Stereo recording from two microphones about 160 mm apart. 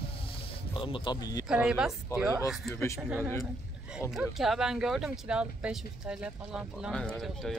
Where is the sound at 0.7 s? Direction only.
30° left (ahead or behind).